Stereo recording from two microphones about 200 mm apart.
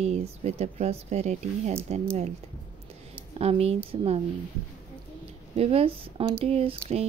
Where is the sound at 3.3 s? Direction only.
30° right (ahead or behind).